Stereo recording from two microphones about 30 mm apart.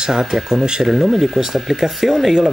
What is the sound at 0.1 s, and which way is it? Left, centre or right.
Speech, centre.